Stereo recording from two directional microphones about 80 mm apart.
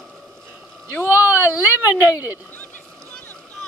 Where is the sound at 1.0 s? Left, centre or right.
Right.